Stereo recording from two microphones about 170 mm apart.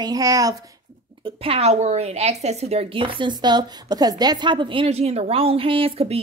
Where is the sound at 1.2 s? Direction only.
35° right (ahead or behind).